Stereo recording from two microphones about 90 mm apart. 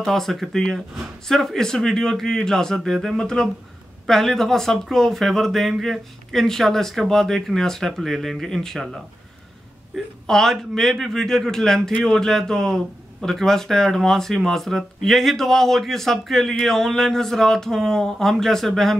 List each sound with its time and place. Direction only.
0.0 s speech: centre (ahead or behind)
10.2 s speech: 5° left (ahead or behind)